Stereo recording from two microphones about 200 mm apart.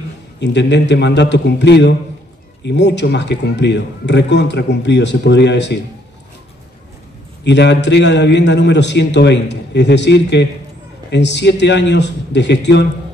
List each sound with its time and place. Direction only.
0.4 s a man's voice: 60° left (ahead or behind)
7.4 s a man's voice: 60° left (ahead or behind)